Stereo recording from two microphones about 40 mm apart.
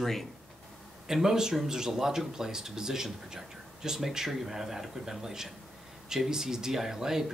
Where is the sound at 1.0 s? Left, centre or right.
Centre.